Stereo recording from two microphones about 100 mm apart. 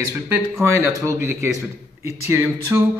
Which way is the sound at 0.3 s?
25° right (ahead or behind).